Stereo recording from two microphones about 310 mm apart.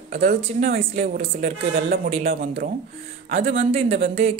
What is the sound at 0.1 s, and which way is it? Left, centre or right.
A woman's voice, right.